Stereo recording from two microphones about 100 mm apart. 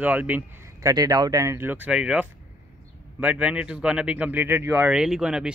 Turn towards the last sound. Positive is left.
turn(degrees=-5)  # may be behind; listen again after turning